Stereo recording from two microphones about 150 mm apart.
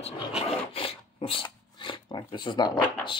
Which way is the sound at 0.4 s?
40° left (ahead or behind).